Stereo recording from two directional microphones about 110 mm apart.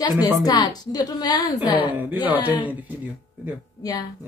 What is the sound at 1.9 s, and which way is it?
Speech, 15° right (ahead or behind).